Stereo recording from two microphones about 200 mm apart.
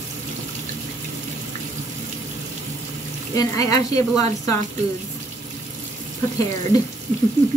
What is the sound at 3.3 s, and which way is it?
Speech, 15° left (ahead or behind).